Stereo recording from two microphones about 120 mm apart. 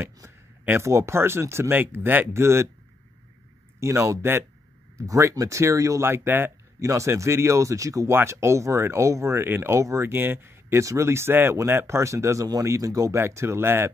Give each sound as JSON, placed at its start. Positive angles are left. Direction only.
{"t": 0.0, "sound": "speech", "side_deg": -20}
{"t": 3.8, "sound": "speech", "side_deg": -25}